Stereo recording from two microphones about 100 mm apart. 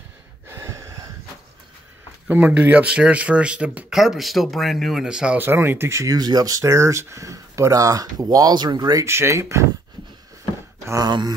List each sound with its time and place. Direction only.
0.5 s gasp: 30° right (ahead or behind)
2.2 s speech: 15° right (ahead or behind)
5.4 s speech: 20° right (ahead or behind); by 9.0 s 45° right (ahead or behind)
9.0 s speech: 25° right (ahead or behind)
10.9 s speech: 40° right (ahead or behind)